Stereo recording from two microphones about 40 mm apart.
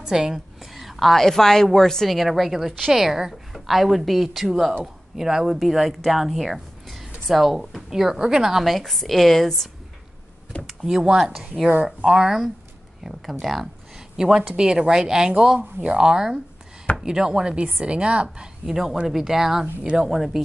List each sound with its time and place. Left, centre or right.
0.1 s a woman's voice: centre
0.7 s a woman's voice: centre
2.1 s a woman's voice: centre
8.6 s a woman's voice: centre
10.7 s a sound: centre
11.1 s speech: centre
13.2 s speech: centre
14.1 s a woman's voice: centre
18.7 s speech: centre